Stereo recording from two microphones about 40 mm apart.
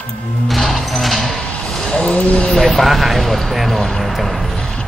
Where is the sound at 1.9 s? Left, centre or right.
Left.